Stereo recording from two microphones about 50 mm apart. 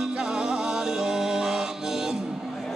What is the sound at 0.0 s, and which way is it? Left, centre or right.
Music, centre.